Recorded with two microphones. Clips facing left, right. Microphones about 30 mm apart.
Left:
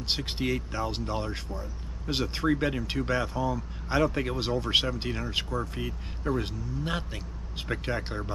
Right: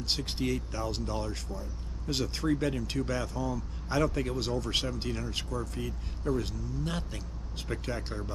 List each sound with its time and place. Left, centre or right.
0.0 s speech: centre